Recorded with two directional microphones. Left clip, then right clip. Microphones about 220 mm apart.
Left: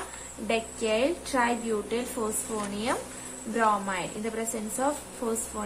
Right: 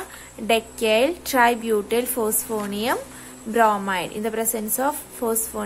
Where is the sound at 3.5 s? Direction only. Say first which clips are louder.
Right 7 dB; 40° right (ahead or behind).